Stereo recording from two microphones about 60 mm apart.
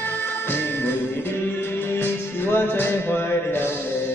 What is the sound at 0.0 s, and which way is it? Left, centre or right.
Music, left.